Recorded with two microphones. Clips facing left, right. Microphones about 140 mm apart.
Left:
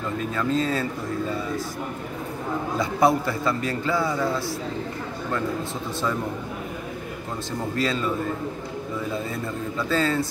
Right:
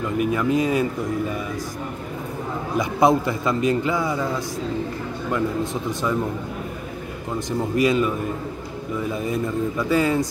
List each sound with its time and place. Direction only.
0.2 s a man's voice: 15° right (ahead or behind)
2.8 s a man's voice: 20° right (ahead or behind)
7.7 s a man's voice: 15° right (ahead or behind)
9.3 s a man's voice: 15° right (ahead or behind)